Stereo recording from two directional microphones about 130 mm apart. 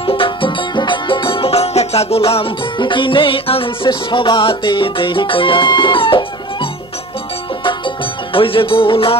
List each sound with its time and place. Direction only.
0.0 s music: 40° left (ahead or behind)
2.8 s music: 40° left (ahead or behind)